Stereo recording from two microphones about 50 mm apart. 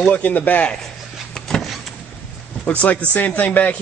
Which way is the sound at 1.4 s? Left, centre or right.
Centre.